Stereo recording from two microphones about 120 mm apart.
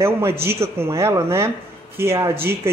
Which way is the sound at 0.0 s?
20° right (ahead or behind).